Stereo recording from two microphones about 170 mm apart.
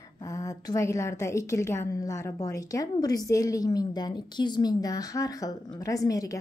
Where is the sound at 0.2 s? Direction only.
20° left (ahead or behind).